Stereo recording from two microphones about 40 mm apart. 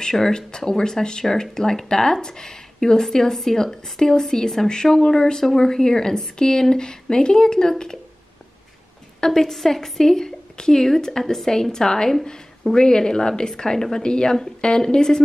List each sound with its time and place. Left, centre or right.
0.0 s speech: centre
9.2 s speech: centre